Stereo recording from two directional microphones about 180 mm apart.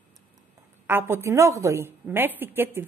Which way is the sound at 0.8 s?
15° right (ahead or behind).